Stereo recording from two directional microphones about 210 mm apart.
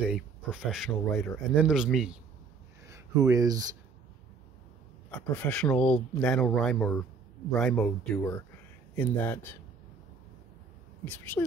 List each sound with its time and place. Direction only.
0.0 s speech: 5° right (ahead or behind)
2.9 s speech: 15° right (ahead or behind)
5.3 s speech: 5° left (ahead or behind)